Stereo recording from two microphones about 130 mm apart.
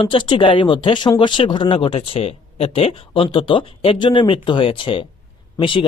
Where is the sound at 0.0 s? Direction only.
40° left (ahead or behind).